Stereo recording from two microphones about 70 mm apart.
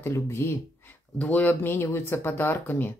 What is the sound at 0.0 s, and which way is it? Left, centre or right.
Speech, left.